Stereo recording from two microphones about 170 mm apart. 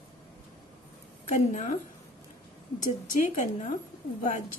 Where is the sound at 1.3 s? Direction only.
45° left (ahead or behind).